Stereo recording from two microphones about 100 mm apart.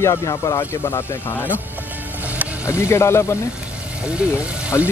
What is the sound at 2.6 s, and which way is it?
Speech, 30° left (ahead or behind).